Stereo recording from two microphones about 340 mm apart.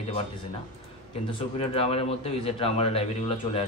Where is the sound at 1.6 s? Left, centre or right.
Centre.